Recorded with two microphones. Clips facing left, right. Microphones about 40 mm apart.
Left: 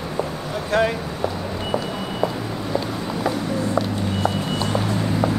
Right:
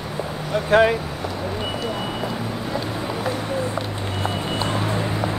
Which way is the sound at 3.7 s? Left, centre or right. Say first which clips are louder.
Left 4 dB; right.